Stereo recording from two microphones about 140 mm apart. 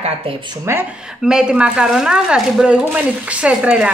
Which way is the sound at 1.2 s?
5° right (ahead or behind).